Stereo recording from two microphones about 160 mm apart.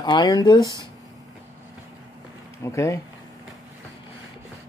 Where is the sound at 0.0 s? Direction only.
25° left (ahead or behind).